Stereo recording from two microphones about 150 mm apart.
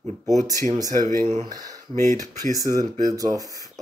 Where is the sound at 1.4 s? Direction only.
30° right (ahead or behind).